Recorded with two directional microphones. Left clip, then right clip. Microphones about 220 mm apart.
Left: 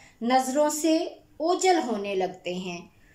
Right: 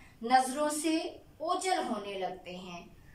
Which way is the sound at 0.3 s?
35° left (ahead or behind).